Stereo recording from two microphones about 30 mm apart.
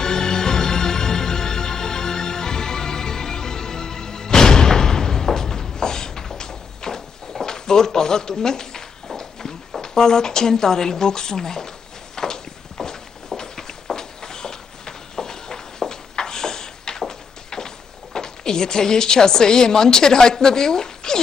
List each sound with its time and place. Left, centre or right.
0.0 s music: left
7.4 s a sound: centre
9.8 s speech: centre
12.2 s walk: centre
13.9 s a sound: left
17.1 s speech: left